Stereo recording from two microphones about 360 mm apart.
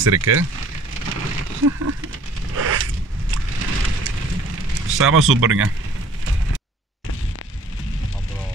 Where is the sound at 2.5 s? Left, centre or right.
Right.